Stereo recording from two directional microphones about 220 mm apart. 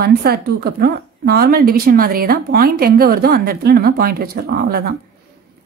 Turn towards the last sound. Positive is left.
turn(degrees=-45)  # may be behind; listen again after turning